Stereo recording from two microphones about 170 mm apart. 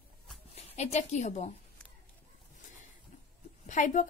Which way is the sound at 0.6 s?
40° left (ahead or behind).